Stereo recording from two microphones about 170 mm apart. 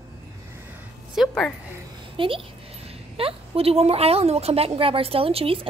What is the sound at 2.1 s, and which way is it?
A woman's voice, 30° right (ahead or behind).